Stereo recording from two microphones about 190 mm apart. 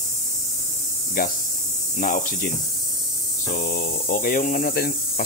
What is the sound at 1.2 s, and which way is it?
Speech, 50° left (ahead or behind).